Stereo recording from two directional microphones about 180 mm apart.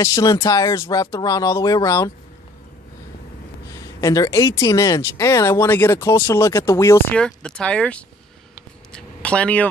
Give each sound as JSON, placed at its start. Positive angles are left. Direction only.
{"t": 0.0, "sound": "speech", "side_deg": 20}
{"t": 3.7, "sound": "speech", "side_deg": 20}
{"t": 8.9, "sound": "a sound", "side_deg": 5}